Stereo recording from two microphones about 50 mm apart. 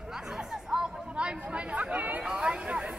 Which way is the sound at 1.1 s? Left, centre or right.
Right.